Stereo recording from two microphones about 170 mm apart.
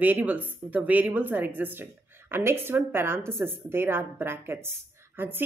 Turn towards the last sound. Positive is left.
turn(degrees=-15)  # may be behind; listen again after turning